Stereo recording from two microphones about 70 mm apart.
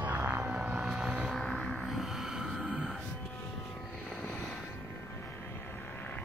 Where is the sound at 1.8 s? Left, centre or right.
Centre.